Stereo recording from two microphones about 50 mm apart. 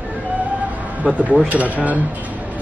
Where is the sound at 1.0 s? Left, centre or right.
Right.